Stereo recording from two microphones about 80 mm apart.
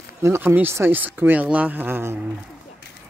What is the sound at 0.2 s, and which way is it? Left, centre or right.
Speech, right.